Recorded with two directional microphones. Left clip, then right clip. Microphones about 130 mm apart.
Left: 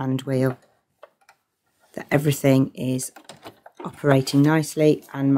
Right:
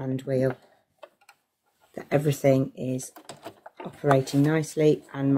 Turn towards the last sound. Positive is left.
turn(degrees=45)  # may be behind; listen again after turning